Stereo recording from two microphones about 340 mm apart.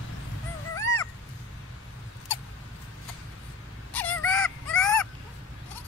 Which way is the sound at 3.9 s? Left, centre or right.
Centre.